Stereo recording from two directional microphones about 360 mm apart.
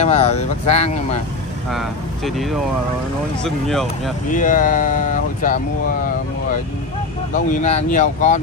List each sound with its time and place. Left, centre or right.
0.0 s speech: centre
1.7 s speech: centre
4.3 s speech: left
7.3 s speech: centre